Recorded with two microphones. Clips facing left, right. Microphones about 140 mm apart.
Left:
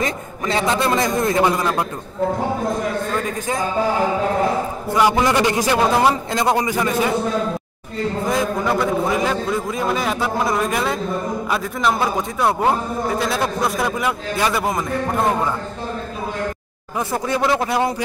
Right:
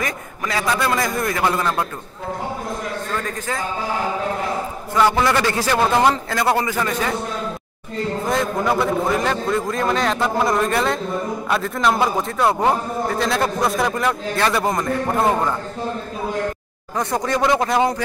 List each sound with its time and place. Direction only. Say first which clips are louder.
0.0 s a man's voice: left 3 dB; 25° left (ahead or behind)
4.9 s a man's voice: left 1 dB; 15° left (ahead or behind)
8.3 s a man's voice: even; centre (ahead or behind)
17.1 s a man's voice: right 1 dB; 5° left (ahead or behind)